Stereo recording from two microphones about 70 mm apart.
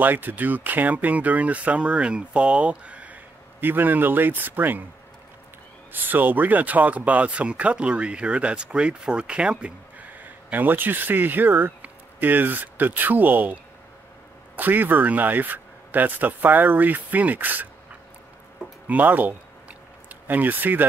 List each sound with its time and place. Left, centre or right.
0.0 s speech: right
5.9 s speech: right
18.9 s speech: right